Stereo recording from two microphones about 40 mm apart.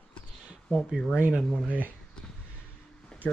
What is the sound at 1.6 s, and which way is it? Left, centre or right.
Speech, right.